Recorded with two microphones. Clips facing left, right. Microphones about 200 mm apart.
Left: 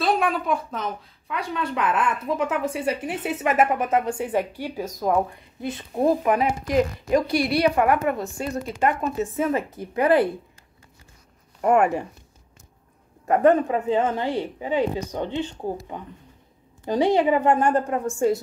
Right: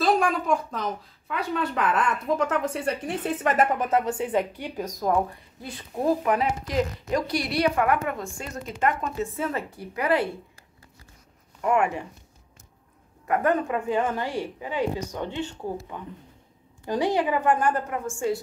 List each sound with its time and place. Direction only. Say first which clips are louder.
0.0 s a woman's voice: even; centre (ahead or behind)
6.2 s a woman's voice: left 3 dB; 15° left (ahead or behind)
7.2 s a woman's voice: left 4 dB; 30° left (ahead or behind)
9.0 s a woman's voice: left 5 dB; 15° left (ahead or behind)
11.6 s speech: left 4 dB; 45° left (ahead or behind)
13.2 s a woman's voice: left 6 dB; 25° left (ahead or behind)